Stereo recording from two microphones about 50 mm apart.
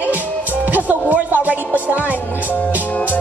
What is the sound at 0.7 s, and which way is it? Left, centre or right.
Music, right.